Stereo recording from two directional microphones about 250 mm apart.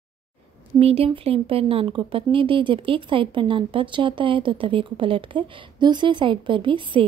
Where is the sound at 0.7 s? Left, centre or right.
Right.